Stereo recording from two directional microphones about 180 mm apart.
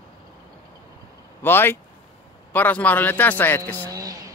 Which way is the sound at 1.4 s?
10° left (ahead or behind).